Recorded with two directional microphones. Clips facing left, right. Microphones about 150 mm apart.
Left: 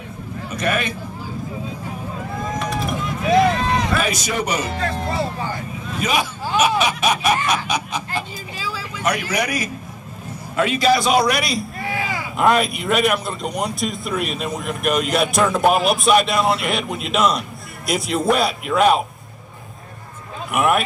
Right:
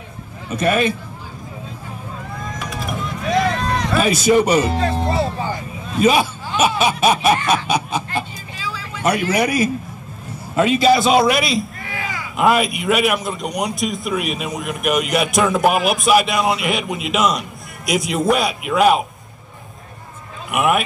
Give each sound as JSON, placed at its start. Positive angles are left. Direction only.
{"t": 0.6, "sound": "speech", "side_deg": -30}
{"t": 2.6, "sound": "run", "side_deg": 0}
{"t": 3.9, "sound": "speech", "side_deg": -30}
{"t": 9.0, "sound": "speech", "side_deg": -30}
{"t": 12.4, "sound": "a man's voice", "side_deg": -5}
{"t": 20.5, "sound": "a man's voice", "side_deg": 0}